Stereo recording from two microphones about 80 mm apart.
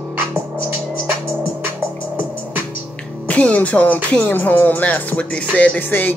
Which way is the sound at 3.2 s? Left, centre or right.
Centre.